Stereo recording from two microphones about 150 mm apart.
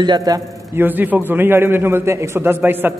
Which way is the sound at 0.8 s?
10° right (ahead or behind).